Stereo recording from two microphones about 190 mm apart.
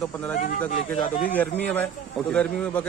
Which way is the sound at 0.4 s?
45° left (ahead or behind).